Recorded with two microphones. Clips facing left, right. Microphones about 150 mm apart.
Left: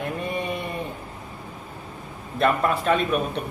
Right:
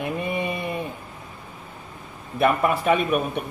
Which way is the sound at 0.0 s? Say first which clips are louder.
Right 2 dB; 10° right (ahead or behind).